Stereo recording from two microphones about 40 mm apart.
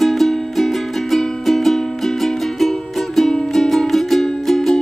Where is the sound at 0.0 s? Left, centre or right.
Centre.